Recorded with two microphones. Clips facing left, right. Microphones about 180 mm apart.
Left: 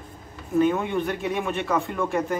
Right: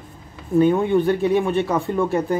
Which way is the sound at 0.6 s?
35° right (ahead or behind).